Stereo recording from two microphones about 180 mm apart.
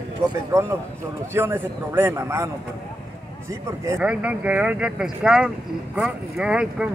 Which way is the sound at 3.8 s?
10° right (ahead or behind).